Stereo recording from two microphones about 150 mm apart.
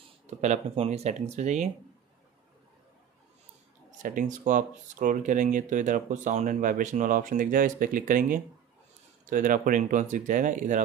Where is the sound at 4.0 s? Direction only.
60° right (ahead or behind).